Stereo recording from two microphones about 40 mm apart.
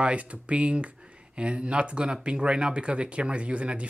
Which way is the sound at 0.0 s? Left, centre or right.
Right.